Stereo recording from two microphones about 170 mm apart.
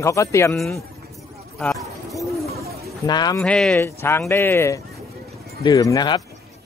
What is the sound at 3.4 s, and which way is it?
Speech, 5° left (ahead or behind).